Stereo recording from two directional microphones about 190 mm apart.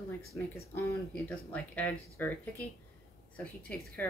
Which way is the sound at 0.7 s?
10° left (ahead or behind).